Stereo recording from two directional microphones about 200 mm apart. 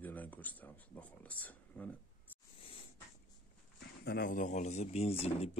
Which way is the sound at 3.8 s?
50° left (ahead or behind).